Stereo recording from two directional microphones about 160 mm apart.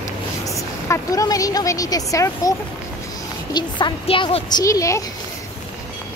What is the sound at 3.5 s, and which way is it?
Speech, 30° left (ahead or behind).